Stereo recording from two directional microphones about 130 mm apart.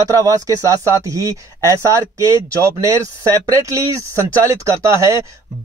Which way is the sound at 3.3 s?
25° right (ahead or behind).